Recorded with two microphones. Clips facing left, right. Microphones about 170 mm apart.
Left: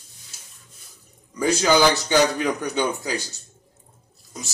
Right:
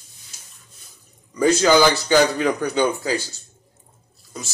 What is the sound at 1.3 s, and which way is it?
Speech, 10° left (ahead or behind).